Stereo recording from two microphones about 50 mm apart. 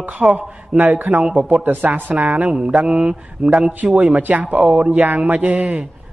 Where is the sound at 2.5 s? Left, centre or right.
Centre.